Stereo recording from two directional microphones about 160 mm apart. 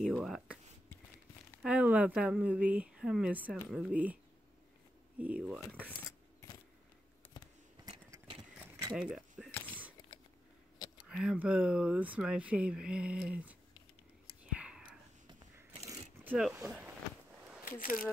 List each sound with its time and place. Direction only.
0.0 s a sound: centre (ahead or behind)
1.6 s speech: 10° right (ahead or behind)
5.2 s speech: 10° right (ahead or behind)
8.3 s horse: 30° right (ahead or behind)
9.5 s a sound: 10° left (ahead or behind)
11.0 s speech: 5° right (ahead or behind)
14.4 s whispering: 5° right (ahead or behind)
16.3 s speech: 5° right (ahead or behind)
17.6 s speech: 60° left (ahead or behind)